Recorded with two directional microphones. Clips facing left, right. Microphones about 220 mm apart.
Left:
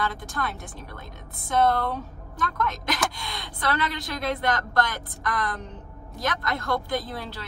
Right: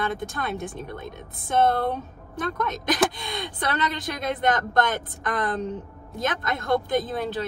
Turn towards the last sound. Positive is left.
turn(degrees=-20)  # may be behind; listen again after turning